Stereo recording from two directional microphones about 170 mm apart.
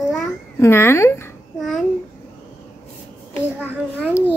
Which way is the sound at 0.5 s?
15° left (ahead or behind).